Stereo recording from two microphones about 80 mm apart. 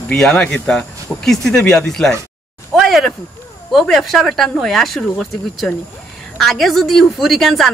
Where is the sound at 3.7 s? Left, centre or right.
Centre.